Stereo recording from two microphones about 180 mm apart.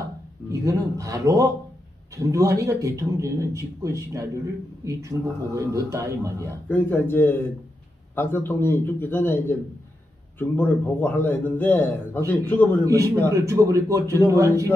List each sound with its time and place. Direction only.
0.5 s a man's voice: 20° right (ahead or behind)
5.1 s speech: 5° right (ahead or behind)
5.5 s a man's voice: 20° right (ahead or behind)
6.7 s a man's voice: 10° left (ahead or behind)
12.8 s speech: 15° right (ahead or behind)